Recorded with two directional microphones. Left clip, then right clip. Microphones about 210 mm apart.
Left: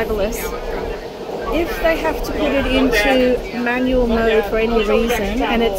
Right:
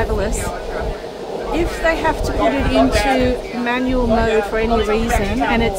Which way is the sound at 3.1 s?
Centre (ahead or behind).